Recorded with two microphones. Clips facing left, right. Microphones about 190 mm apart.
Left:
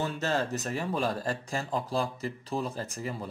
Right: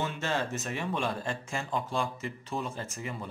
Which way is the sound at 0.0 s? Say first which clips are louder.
Left 2 dB; 40° left (ahead or behind).